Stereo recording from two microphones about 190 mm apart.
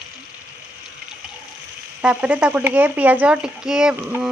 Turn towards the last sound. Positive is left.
turn(degrees=-5)  # may be behind; listen again after turning